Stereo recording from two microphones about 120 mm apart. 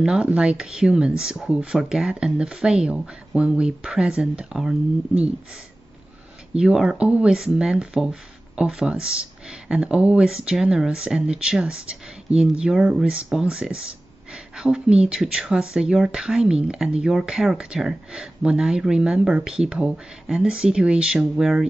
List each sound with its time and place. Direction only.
0.0 s speech: 5° right (ahead or behind)
6.5 s speech: 5° right (ahead or behind)